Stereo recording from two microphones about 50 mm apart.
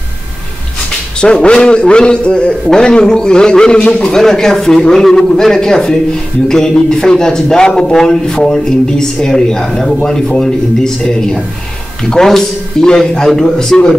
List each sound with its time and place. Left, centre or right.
1.2 s a man's voice: centre